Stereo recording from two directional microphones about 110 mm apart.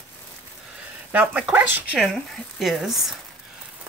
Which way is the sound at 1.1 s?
15° right (ahead or behind).